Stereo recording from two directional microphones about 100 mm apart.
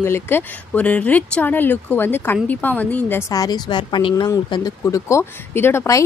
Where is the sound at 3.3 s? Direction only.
40° left (ahead or behind).